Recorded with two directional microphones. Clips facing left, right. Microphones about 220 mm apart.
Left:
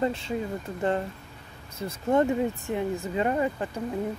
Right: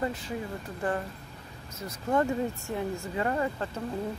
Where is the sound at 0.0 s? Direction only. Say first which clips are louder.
Left 5 dB; 25° left (ahead or behind).